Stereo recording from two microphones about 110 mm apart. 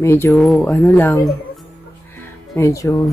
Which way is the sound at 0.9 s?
20° left (ahead or behind).